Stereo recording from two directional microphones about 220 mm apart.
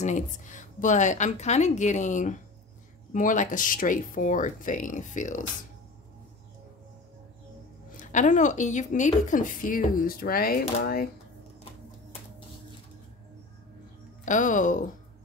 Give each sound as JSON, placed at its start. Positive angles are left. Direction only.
{"t": 0.0, "sound": "a woman's voice", "side_deg": 35}
{"t": 8.0, "sound": "a woman's voice", "side_deg": 35}
{"t": 14.2, "sound": "a woman's voice", "side_deg": 35}